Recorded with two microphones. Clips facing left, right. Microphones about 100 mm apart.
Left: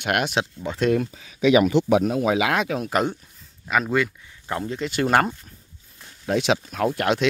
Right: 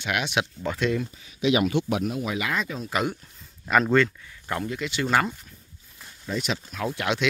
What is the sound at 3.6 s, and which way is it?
Speech, centre (ahead or behind).